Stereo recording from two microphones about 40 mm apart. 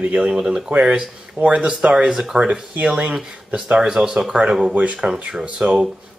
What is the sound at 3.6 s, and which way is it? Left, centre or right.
Speech, right.